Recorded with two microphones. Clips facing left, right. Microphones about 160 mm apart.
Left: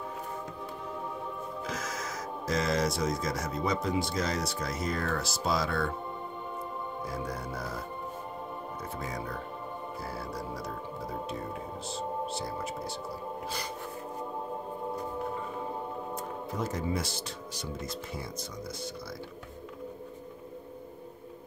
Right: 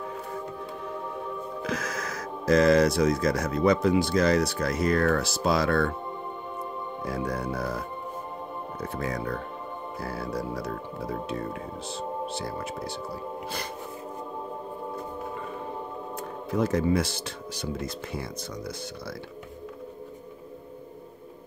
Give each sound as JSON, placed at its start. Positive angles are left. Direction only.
{"t": 1.6, "sound": "speech", "side_deg": -65}
{"t": 7.1, "sound": "speech", "side_deg": -65}
{"t": 8.9, "sound": "speech", "side_deg": -65}
{"t": 16.4, "sound": "speech", "side_deg": -70}